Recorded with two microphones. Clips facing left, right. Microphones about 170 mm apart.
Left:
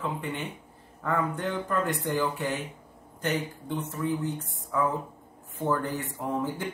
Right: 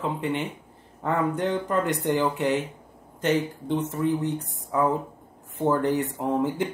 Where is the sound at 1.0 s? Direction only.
20° right (ahead or behind).